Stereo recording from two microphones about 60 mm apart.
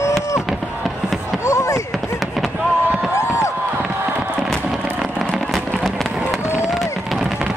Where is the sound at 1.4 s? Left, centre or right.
Left.